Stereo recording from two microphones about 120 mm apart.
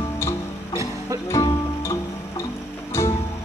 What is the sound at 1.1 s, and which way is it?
Music, 25° right (ahead or behind).